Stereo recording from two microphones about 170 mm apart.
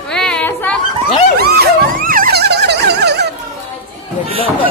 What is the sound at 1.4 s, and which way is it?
Vehicle, 65° right (ahead or behind).